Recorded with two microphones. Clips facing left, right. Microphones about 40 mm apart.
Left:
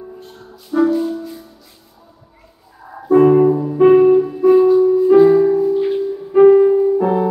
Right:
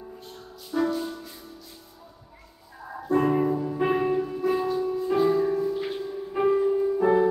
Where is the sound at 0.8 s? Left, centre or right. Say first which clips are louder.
Left 11 dB; centre.